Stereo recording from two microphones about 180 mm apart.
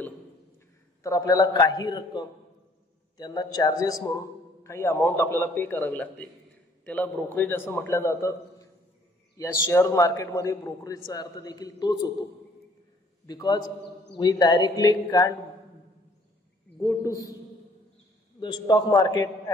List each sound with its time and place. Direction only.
1.0 s a man's voice: 20° left (ahead or behind)
13.3 s a man's voice: 20° left (ahead or behind)
16.8 s a man's voice: 15° left (ahead or behind)
18.4 s a man's voice: 25° left (ahead or behind)